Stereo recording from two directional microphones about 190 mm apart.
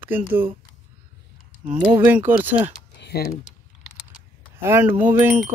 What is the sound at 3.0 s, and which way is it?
Typing, 55° left (ahead or behind).